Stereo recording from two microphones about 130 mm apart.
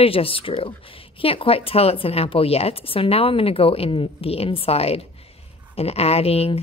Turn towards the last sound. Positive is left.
turn(degrees=50)  # may be behind; listen again after turning